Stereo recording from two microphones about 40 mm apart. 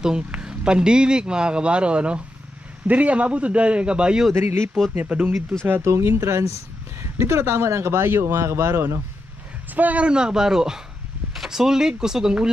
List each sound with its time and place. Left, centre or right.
0.3 s a man's voice: right
4.3 s speech: right
4.9 s a man's voice: right
5.7 s speech: right
9.8 s a man's voice: right
10.0 s a man's voice: right